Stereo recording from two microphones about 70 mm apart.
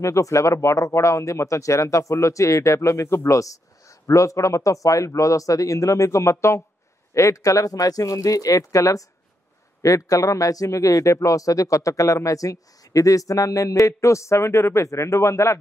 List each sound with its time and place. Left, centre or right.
0.0 s speech: left